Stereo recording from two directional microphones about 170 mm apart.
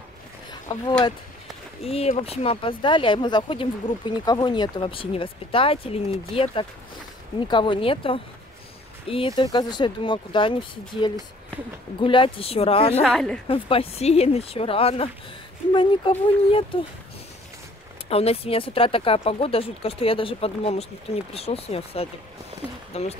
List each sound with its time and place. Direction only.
0.5 s speech: 25° left (ahead or behind)
13.0 s a woman's voice: 5° left (ahead or behind)
13.5 s speech: 35° left (ahead or behind)
18.1 s speech: 35° left (ahead or behind)